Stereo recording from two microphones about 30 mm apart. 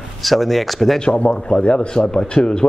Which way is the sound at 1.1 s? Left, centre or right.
Left.